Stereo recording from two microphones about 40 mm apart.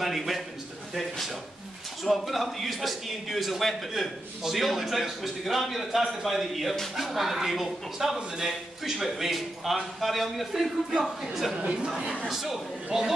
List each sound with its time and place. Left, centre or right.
0.0 s speech: centre
11.5 s speech: right
12.3 s a man's voice: centre